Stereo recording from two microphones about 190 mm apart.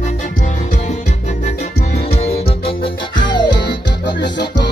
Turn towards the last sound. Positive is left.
turn(degrees=65)  # may be behind; listen again after turning